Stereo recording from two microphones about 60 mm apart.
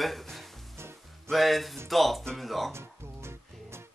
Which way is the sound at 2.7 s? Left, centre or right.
Right.